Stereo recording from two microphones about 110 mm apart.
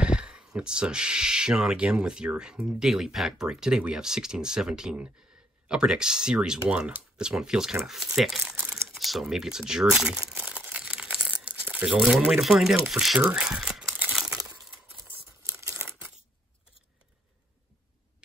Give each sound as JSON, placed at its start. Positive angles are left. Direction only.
{"t": 0.0, "sound": "speech", "side_deg": -10}
{"t": 10.5, "sound": "crumpling", "side_deg": -10}
{"t": 15.6, "sound": "crumpling", "side_deg": -25}